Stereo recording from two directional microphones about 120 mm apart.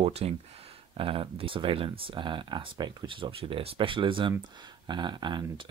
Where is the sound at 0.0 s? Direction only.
60° right (ahead or behind).